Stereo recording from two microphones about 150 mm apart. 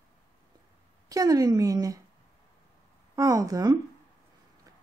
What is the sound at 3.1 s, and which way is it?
Speech, 25° right (ahead or behind).